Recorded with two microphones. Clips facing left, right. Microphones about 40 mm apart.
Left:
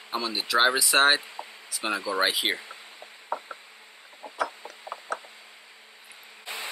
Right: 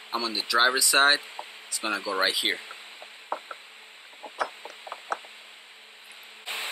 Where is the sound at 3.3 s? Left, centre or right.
Right.